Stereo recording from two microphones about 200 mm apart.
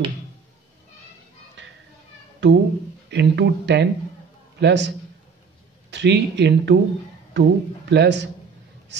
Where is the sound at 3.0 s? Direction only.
60° right (ahead or behind).